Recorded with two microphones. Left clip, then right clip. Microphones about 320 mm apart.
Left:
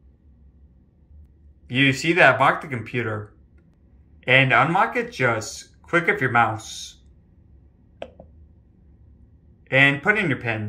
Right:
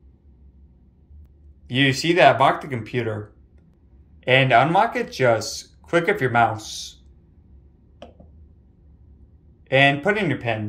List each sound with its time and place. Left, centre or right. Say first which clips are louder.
1.8 s speech: even; centre
4.2 s speech: right 1 dB; centre
9.8 s speech: even; centre